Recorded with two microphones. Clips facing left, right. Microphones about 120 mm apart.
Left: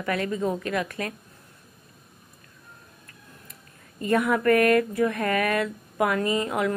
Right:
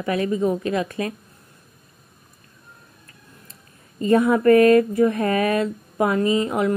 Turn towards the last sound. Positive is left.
turn(degrees=-20)  # may be behind; listen again after turning